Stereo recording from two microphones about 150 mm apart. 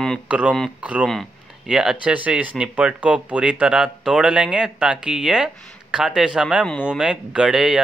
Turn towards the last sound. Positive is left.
turn(degrees=-5)  # may be behind; listen again after turning